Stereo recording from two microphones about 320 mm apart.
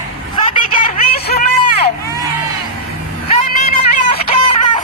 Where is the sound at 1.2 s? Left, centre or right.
Left.